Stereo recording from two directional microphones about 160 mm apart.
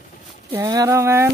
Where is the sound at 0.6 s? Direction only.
20° right (ahead or behind).